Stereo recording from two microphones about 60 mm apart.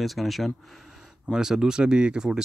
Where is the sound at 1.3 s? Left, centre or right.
Centre.